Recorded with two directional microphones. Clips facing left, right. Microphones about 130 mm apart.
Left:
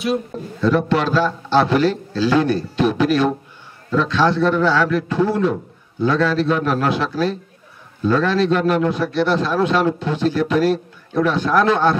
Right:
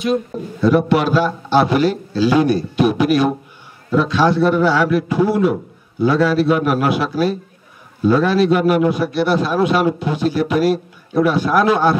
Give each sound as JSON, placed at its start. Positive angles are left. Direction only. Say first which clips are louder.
{"t": 0.3, "sound": "a man's voice", "louder": "right 3 dB", "side_deg": -10}